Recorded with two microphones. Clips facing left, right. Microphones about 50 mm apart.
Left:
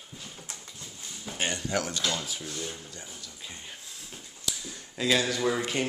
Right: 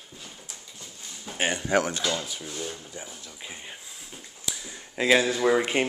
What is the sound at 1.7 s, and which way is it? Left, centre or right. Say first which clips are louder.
Speech: right 10 dB; right.